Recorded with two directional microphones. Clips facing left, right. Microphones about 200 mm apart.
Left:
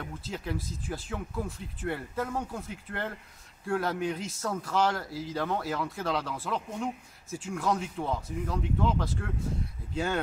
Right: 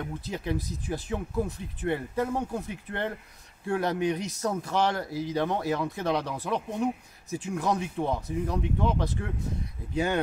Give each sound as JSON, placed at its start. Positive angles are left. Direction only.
{"t": 0.0, "sound": "speech", "side_deg": -20}